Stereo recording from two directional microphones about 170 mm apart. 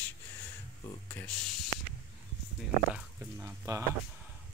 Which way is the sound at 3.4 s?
15° right (ahead or behind).